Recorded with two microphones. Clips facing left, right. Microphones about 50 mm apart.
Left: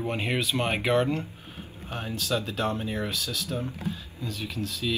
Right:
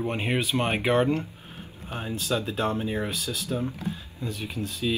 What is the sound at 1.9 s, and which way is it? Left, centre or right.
Speech, centre.